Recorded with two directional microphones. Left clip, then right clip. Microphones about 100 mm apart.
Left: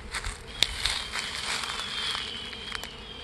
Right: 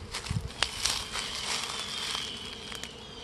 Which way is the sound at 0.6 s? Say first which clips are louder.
Left 2 dB; 10° left (ahead or behind).